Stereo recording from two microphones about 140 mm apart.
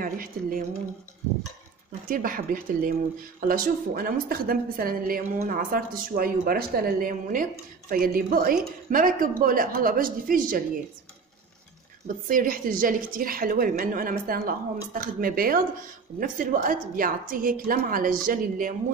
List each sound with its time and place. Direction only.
0.0 s a woman's voice: 90° right
2.0 s a woman's voice: 90° right
12.3 s a woman's voice: 75° right (ahead or behind)
16.6 s a woman's voice: 85° right